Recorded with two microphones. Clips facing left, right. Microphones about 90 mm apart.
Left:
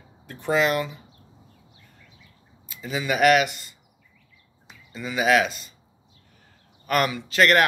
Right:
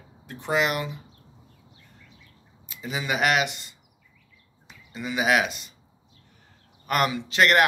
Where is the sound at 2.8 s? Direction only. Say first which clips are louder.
Left 4 dB; 20° right (ahead or behind).